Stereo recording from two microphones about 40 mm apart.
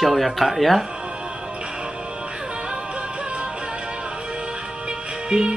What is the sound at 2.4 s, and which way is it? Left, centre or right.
Music, right.